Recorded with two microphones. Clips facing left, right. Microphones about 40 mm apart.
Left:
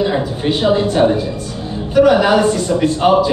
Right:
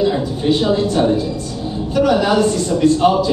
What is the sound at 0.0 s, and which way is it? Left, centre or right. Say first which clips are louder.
A man's voice: even; left.